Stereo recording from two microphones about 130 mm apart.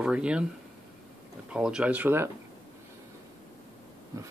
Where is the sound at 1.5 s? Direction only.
5° right (ahead or behind).